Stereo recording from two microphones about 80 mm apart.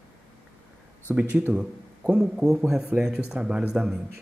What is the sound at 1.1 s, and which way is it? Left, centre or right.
Speech, centre.